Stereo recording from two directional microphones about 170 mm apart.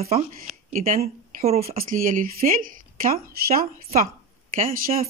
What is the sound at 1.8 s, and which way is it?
A woman's voice, 55° right (ahead or behind).